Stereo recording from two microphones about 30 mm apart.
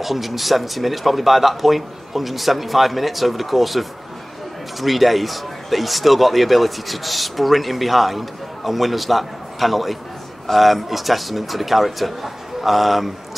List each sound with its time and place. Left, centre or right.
0.0 s a man's voice: centre